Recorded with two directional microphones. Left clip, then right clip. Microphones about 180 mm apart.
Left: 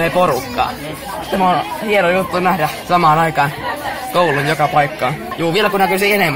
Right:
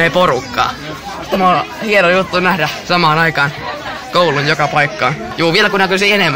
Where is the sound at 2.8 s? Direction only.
15° right (ahead or behind).